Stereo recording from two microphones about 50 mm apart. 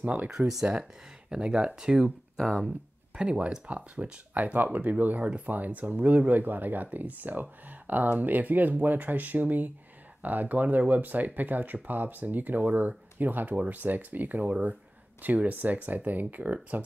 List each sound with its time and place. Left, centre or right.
0.0 s speech: right
1.3 s speech: centre
3.2 s speech: right